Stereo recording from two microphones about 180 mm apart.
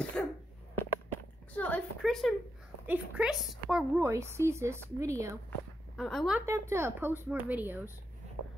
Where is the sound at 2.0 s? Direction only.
Centre (ahead or behind).